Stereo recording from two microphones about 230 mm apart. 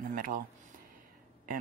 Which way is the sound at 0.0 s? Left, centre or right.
Right.